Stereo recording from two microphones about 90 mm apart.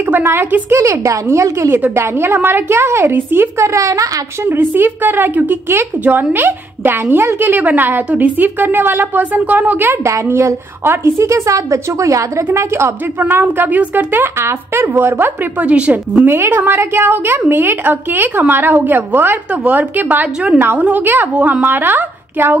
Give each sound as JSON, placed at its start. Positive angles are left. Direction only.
{"t": 0.0, "sound": "speech", "side_deg": -25}
{"t": 4.5, "sound": "a woman's voice", "side_deg": -25}
{"t": 15.7, "sound": "a woman's voice", "side_deg": -10}
{"t": 16.3, "sound": "speech", "side_deg": -25}